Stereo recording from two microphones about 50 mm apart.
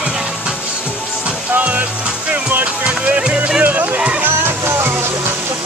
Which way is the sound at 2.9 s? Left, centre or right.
Right.